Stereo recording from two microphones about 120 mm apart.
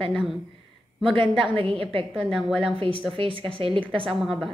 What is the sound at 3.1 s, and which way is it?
Speech, 45° right (ahead or behind).